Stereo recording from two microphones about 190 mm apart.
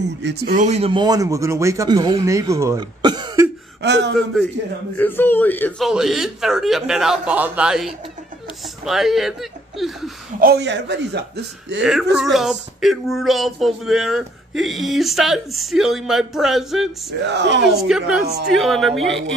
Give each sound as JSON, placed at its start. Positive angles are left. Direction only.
{"t": 0.0, "sound": "a man's voice", "side_deg": -65}
{"t": 0.6, "sound": "speech", "side_deg": -35}
{"t": 3.8, "sound": "a man's voice", "side_deg": -65}
{"t": 4.9, "sound": "a sound", "side_deg": 10}
{"t": 8.8, "sound": "speech", "side_deg": 0}
{"t": 10.4, "sound": "a man's voice", "side_deg": -60}
{"t": 11.8, "sound": "a sound", "side_deg": -5}
{"t": 17.2, "sound": "speech", "side_deg": -65}
{"t": 17.6, "sound": "a sound", "side_deg": 0}